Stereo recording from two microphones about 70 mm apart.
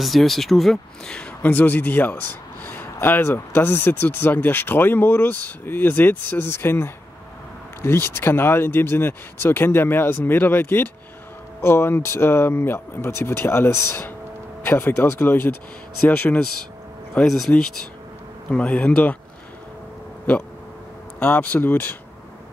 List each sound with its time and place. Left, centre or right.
0.0 s speech: centre
1.4 s speech: left
17.3 s speech: centre
18.5 s speech: centre
21.2 s speech: left